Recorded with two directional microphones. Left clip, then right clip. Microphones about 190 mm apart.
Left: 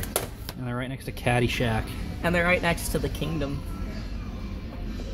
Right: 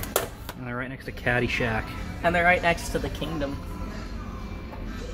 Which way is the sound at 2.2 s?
55° left (ahead or behind).